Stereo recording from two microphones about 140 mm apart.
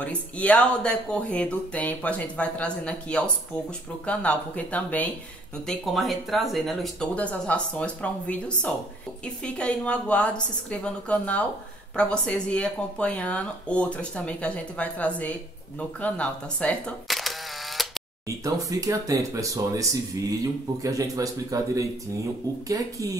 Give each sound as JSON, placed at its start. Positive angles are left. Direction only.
{"t": 0.0, "sound": "speech", "side_deg": 10}
{"t": 5.7, "sound": "speech", "side_deg": 0}
{"t": 18.4, "sound": "speech", "side_deg": -25}